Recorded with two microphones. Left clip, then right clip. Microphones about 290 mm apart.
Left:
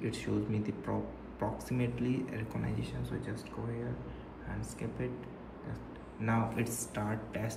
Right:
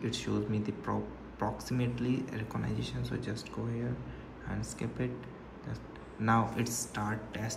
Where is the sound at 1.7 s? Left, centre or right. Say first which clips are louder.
Right 1 dB; centre.